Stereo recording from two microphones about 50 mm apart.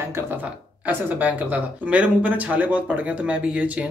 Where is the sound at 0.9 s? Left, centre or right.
Right.